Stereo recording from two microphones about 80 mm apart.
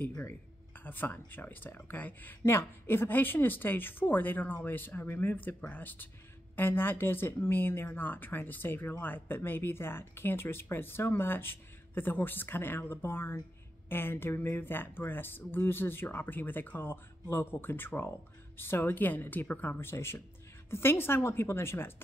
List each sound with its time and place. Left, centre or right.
0.2 s a woman's voice: left